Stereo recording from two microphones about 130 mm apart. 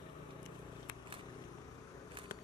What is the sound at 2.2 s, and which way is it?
Biting, 40° right (ahead or behind).